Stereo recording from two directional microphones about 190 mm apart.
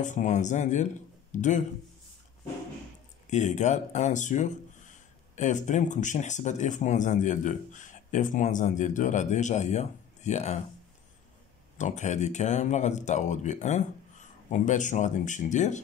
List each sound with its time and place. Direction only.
0.0 s speech: 40° left (ahead or behind)
3.3 s speech: 40° left (ahead or behind)
11.8 s speech: 40° left (ahead or behind)